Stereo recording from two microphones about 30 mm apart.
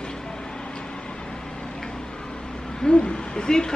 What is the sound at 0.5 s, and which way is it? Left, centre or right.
Vehicle, left.